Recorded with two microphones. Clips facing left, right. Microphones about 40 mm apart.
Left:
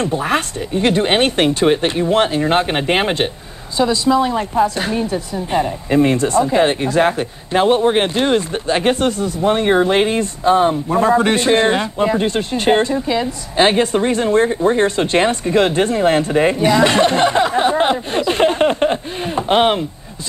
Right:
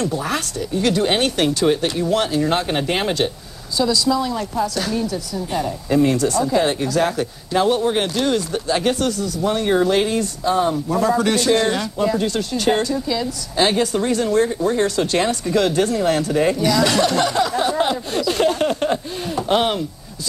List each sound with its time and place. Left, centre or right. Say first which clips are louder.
0.0 s speech: left 4 dB; left